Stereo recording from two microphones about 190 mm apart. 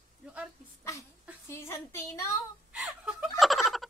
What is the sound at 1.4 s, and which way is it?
Speech, 15° left (ahead or behind).